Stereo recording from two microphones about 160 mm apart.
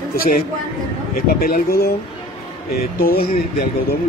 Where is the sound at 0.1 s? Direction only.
65° left (ahead or behind).